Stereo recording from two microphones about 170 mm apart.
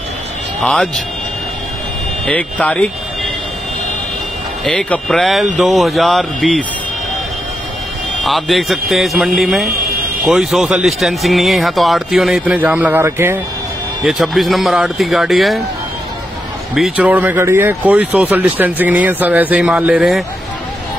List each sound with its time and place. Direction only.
0.6 s speech: 5° left (ahead or behind)
2.2 s speech: 10° left (ahead or behind)
4.6 s speech: 5° left (ahead or behind)
8.2 s speech: centre (ahead or behind)
14.0 s speech: centre (ahead or behind)
16.7 s speech: 5° right (ahead or behind)